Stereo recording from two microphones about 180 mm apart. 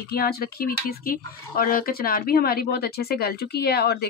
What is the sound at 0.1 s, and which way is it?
Speech, 60° left (ahead or behind).